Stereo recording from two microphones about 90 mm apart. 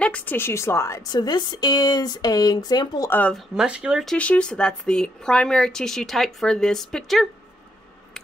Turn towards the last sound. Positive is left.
turn(degrees=5)  # may be behind; listen again after turning